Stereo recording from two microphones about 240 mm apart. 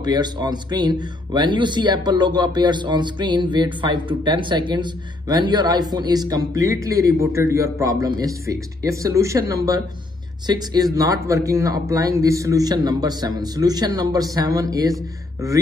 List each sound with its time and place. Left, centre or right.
0.0 s a man's voice: centre